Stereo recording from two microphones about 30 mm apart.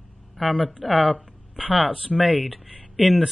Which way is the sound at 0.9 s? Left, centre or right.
Right.